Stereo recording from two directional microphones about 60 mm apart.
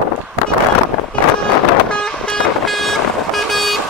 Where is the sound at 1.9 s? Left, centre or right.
Centre.